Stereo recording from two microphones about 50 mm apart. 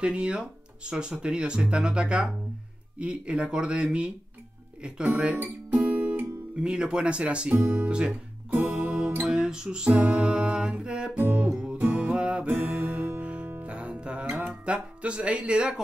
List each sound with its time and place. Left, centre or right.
0.0 s speech: right
5.4 s guitar: right
6.6 s speech: right
7.6 s speech: right
7.9 s speech: right
8.5 s music: right
9.2 s music: centre
11.8 s music: right
14.5 s speech: right